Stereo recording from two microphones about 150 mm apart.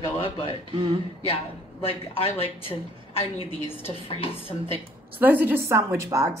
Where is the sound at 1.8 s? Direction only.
40° left (ahead or behind).